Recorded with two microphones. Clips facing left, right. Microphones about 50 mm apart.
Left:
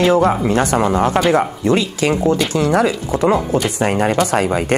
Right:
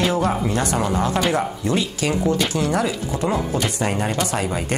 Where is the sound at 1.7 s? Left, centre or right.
Left.